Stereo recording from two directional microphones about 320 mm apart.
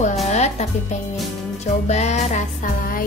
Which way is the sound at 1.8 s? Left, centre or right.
Left.